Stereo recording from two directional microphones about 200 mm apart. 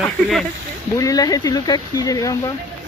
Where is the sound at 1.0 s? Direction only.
15° left (ahead or behind).